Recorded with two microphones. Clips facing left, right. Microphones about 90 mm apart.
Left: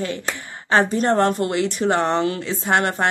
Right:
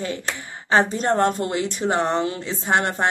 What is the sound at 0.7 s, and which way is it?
Speech, 20° right (ahead or behind).